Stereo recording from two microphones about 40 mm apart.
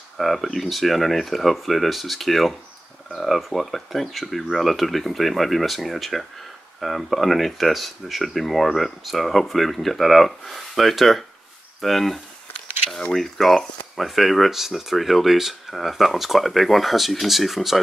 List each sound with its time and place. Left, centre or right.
0.2 s speech: centre